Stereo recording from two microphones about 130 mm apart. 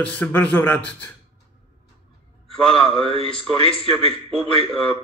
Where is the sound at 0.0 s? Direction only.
10° left (ahead or behind).